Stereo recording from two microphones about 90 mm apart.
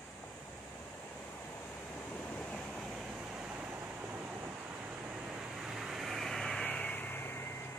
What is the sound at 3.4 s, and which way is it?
Vehicle, 15° right (ahead or behind).